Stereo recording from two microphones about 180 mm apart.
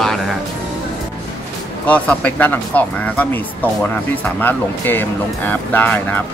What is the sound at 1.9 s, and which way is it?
Speech, 5° left (ahead or behind).